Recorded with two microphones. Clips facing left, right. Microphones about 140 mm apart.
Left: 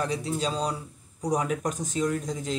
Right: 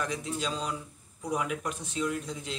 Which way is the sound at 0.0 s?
35° left (ahead or behind).